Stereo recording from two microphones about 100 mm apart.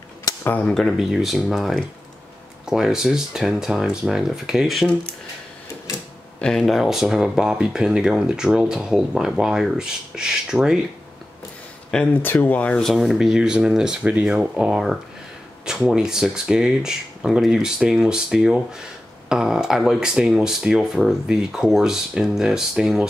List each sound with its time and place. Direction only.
0.2 s a sound: 35° left (ahead or behind)
0.7 s speech: 5° left (ahead or behind)
6.4 s speech: 5° left (ahead or behind)
11.9 s speech: 15° left (ahead or behind)
12.8 s speech: centre (ahead or behind)